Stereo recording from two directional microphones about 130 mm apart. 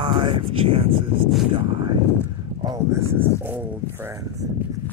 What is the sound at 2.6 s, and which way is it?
Speech, 30° right (ahead or behind).